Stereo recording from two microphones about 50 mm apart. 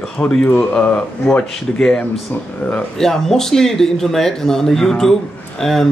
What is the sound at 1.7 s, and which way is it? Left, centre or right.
Speech, centre.